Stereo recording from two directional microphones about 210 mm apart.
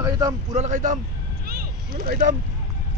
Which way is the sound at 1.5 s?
45° right (ahead or behind).